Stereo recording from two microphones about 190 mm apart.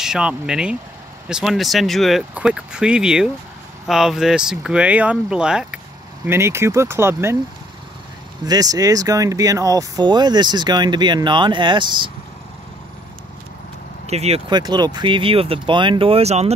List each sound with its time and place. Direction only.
0.0 s speech: 5° right (ahead or behind)
8.5 s speech: 20° right (ahead or behind)
14.0 s speech: 35° right (ahead or behind)
14.6 s speech: 20° right (ahead or behind)